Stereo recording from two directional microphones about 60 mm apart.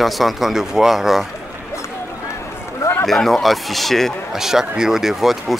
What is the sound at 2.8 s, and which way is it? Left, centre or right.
Run, left.